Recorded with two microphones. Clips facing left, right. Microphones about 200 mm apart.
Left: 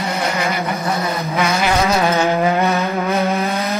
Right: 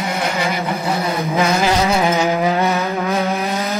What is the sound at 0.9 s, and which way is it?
Vehicle, 15° right (ahead or behind).